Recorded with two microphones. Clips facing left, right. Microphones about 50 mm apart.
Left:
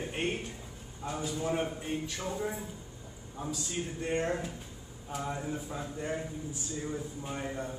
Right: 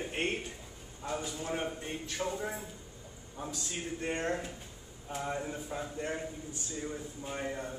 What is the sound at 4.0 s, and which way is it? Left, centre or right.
A man's voice, centre.